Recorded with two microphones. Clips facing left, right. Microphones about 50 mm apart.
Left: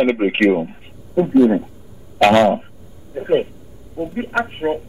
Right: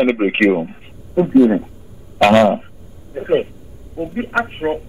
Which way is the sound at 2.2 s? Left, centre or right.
Centre.